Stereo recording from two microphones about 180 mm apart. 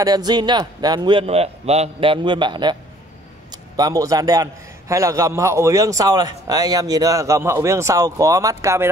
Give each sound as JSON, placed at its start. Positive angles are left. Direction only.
{"t": 0.0, "sound": "a man's voice", "side_deg": -20}